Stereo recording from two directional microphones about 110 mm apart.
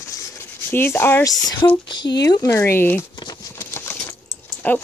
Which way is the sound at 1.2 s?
35° left (ahead or behind).